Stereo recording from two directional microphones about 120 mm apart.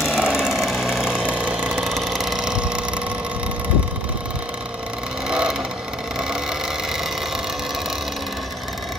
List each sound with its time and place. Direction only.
0.0 s vehicle: 5° right (ahead or behind)
5.3 s vehicle: 5° right (ahead or behind)